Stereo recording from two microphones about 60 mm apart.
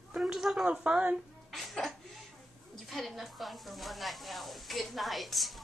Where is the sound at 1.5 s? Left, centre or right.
Centre.